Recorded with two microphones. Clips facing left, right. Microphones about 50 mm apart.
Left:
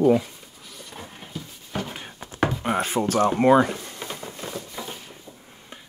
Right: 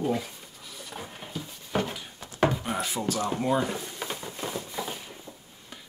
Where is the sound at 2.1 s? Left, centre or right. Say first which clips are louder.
Even; left.